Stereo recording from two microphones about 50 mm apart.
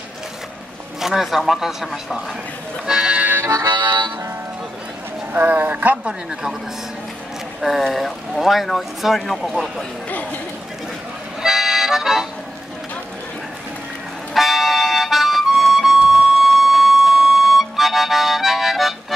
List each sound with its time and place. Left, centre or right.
1.0 s speech: centre
2.9 s music: centre
5.3 s a man's voice: right
7.6 s speech: centre
11.4 s music: centre
14.3 s music: centre